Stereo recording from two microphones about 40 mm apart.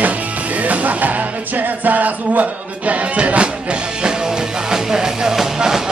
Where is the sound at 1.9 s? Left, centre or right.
Right.